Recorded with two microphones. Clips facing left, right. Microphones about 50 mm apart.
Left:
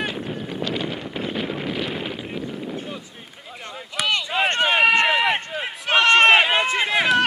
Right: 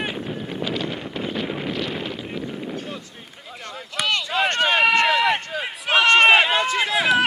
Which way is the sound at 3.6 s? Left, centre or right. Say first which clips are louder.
Even; centre.